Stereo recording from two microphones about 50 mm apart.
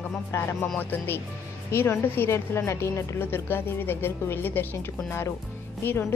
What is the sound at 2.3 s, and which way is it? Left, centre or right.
Speech, left.